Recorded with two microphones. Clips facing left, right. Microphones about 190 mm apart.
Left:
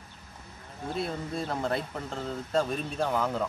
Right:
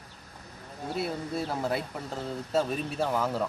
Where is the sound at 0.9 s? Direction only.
5° right (ahead or behind).